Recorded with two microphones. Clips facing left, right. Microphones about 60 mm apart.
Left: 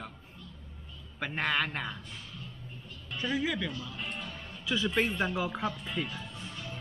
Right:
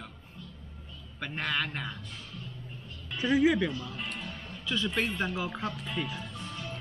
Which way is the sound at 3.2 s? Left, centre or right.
Centre.